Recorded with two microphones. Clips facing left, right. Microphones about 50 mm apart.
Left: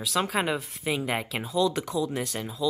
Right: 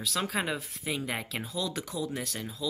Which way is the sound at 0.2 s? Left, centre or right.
Left.